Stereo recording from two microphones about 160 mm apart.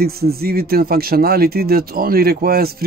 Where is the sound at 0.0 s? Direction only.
70° right (ahead or behind).